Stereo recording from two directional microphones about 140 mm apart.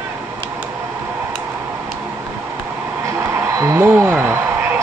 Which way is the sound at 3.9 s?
15° right (ahead or behind).